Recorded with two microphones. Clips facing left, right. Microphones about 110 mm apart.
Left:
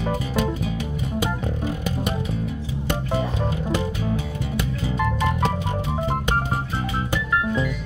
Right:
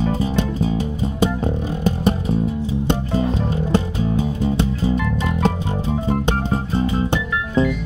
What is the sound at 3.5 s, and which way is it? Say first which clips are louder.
Music: right 4 dB; 35° right (ahead or behind).